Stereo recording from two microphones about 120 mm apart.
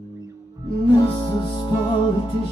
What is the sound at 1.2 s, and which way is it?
Music, 40° left (ahead or behind).